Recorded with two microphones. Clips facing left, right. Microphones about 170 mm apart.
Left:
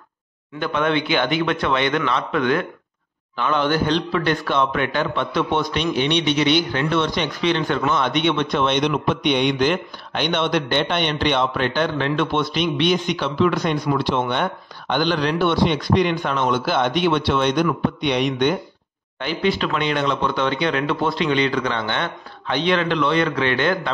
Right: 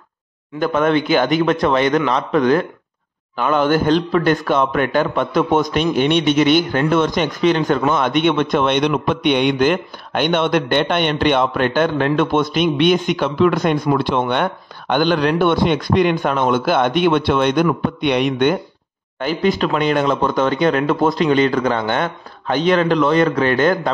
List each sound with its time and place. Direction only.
0.6 s a man's voice: 45° right (ahead or behind)
19.1 s a man's voice: 45° right (ahead or behind)